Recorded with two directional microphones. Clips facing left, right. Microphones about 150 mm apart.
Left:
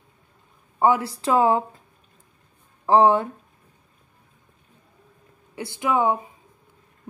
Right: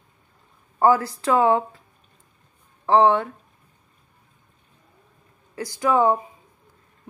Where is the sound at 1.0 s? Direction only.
30° left (ahead or behind).